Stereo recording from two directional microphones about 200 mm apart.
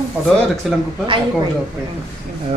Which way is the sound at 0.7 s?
Centre (ahead or behind).